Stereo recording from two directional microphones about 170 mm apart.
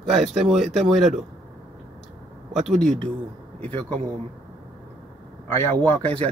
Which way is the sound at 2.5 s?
Centre (ahead or behind).